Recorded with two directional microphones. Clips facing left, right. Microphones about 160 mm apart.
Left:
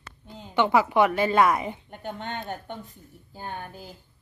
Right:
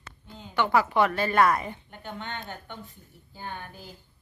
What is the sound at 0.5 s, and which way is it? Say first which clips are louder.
A woman's voice: left 3 dB; 20° left (ahead or behind).